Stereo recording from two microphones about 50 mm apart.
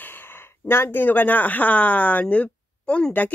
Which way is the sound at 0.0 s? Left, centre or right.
Left.